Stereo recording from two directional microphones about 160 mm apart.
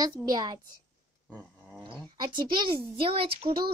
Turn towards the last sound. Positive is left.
turn(degrees=-35)  # may be behind; listen again after turning